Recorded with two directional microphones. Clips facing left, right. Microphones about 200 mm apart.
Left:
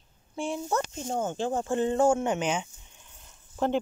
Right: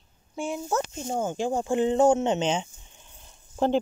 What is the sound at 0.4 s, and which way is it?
Speech, 5° right (ahead or behind).